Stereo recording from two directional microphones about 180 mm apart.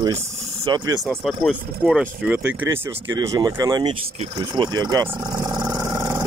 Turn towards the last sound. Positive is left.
turn(degrees=-15)  # may be behind; listen again after turning